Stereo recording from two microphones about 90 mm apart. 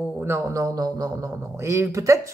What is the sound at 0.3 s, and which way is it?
Speech, 40° right (ahead or behind).